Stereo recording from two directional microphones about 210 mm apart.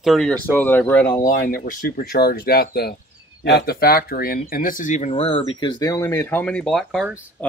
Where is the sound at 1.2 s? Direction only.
40° left (ahead or behind); by 7.5 s 5° left (ahead or behind).